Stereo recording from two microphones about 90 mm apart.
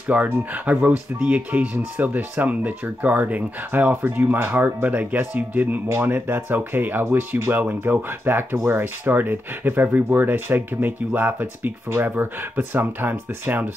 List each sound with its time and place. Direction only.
0.1 s speech: 20° right (ahead or behind)